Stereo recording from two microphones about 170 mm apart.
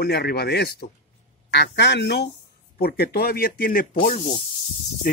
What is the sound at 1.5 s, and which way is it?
Speech, 85° left.